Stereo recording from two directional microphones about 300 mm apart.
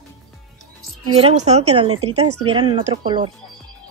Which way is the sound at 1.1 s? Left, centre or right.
Right.